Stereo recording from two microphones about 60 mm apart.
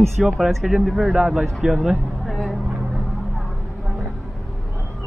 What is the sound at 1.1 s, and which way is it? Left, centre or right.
Speech, centre.